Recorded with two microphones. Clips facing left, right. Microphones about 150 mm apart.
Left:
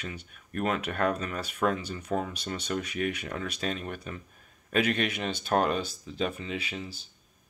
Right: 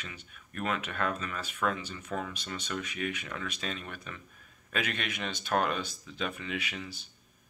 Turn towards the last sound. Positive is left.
turn(degrees=30)  # may be behind; listen again after turning